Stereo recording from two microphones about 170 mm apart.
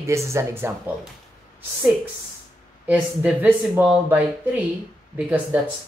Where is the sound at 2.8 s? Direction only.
10° right (ahead or behind).